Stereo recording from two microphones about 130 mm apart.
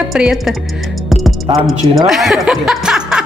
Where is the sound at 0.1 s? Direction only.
Centre (ahead or behind).